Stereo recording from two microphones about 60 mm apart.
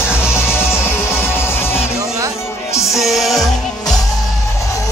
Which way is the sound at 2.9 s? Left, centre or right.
Centre.